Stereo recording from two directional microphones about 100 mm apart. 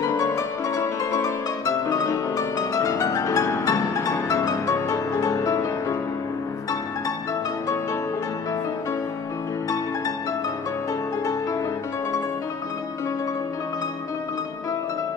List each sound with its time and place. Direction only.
0.0 s music: 35° left (ahead or behind)